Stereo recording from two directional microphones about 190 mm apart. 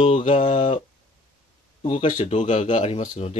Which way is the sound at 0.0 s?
30° left (ahead or behind).